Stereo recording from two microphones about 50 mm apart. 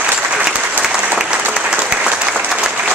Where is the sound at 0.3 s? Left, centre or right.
Centre.